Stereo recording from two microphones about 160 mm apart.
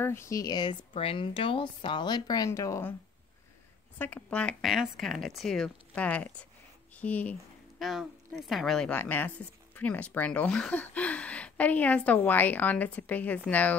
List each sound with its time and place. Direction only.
0.0 s speech: 15° left (ahead or behind)
4.0 s a woman's voice: 10° left (ahead or behind)
7.8 s a woman's voice: centre (ahead or behind)